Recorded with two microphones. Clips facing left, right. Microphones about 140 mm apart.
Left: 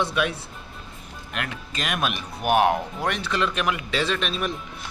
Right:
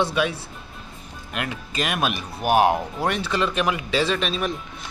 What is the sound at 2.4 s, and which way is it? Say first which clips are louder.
Speech: right 2 dB; 35° right (ahead or behind).